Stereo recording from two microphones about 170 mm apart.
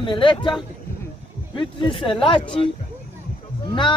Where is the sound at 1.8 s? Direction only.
30° left (ahead or behind).